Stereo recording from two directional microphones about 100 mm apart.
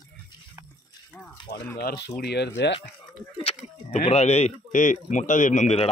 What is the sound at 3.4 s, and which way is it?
Speech, 90° left.